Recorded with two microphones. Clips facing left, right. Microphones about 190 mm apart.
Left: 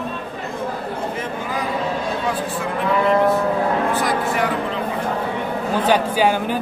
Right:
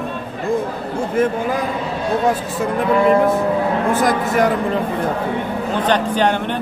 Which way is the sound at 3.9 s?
45° right (ahead or behind).